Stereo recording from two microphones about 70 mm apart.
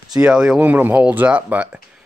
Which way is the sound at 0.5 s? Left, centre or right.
Right.